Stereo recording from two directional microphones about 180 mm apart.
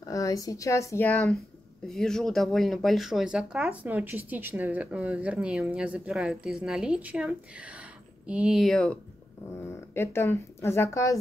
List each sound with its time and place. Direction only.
0.1 s speech: 20° left (ahead or behind)
1.9 s speech: 5° left (ahead or behind)
9.9 s speech: 15° left (ahead or behind)